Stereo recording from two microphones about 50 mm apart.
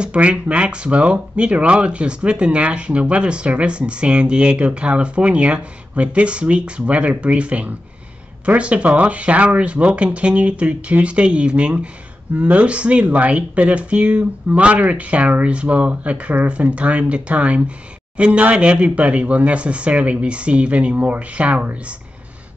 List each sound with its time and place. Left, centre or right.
0.0 s speech: right